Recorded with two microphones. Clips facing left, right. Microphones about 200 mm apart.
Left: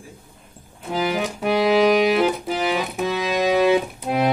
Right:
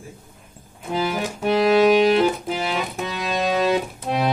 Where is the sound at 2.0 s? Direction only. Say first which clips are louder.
Right 1 dB; 5° left (ahead or behind).